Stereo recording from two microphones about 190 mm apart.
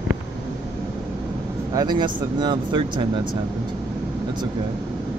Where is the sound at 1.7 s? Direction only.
25° right (ahead or behind).